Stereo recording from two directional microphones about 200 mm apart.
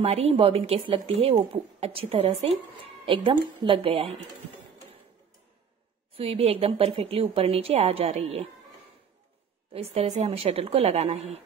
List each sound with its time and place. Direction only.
0.0 s a woman's voice: 30° right (ahead or behind)
6.1 s a woman's voice: 30° right (ahead or behind)
9.8 s a woman's voice: 35° right (ahead or behind)